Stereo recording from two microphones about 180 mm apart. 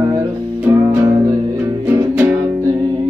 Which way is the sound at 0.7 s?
20° right (ahead or behind).